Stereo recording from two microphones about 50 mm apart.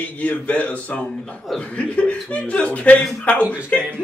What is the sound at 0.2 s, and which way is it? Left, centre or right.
Speech, left.